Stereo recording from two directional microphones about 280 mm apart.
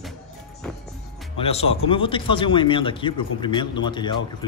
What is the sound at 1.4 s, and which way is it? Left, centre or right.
A man's voice, left.